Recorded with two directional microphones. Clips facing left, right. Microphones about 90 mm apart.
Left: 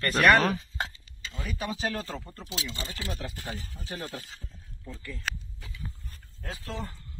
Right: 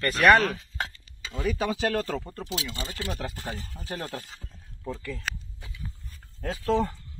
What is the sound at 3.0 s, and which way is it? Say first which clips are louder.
Speech: right 5 dB; 50° right (ahead or behind).